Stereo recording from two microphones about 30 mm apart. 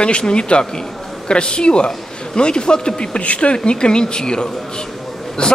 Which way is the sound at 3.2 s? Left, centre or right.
Left.